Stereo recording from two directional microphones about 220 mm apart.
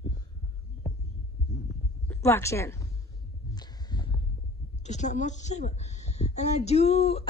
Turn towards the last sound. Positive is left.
turn(degrees=30)  # may be behind; listen again after turning